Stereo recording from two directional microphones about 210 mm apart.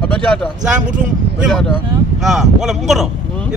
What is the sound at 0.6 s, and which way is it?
Speech, 35° right (ahead or behind).